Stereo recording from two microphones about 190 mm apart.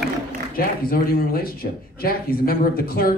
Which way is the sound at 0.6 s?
50° left (ahead or behind).